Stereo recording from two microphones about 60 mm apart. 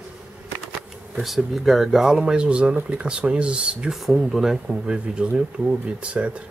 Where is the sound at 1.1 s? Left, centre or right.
Centre.